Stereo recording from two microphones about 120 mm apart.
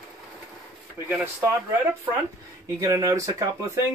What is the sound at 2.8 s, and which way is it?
Speech, 30° right (ahead or behind).